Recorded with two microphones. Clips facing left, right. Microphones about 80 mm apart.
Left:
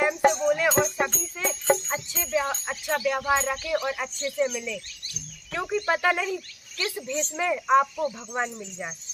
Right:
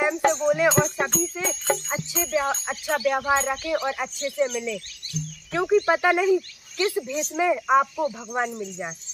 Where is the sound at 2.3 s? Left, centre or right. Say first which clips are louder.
Right 1 dB; centre.